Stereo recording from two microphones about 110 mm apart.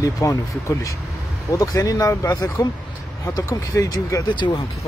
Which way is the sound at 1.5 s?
30° left (ahead or behind).